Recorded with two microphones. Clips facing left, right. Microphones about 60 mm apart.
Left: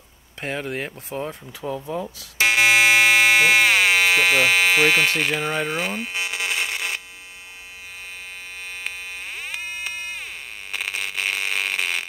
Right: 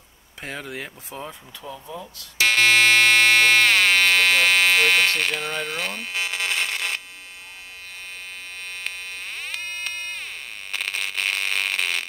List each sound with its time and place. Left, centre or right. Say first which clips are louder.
0.4 s speech: left 5 dB; left
1.6 s speech: left 8 dB; left
2.4 s fire alarm: left 1 dB; centre
8.8 s pulse: left 1 dB; centre
10.7 s a sound: even; centre